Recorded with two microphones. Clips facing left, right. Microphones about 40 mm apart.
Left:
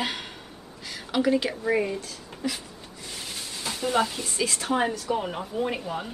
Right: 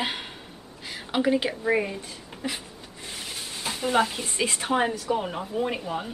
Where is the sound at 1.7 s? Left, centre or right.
Centre.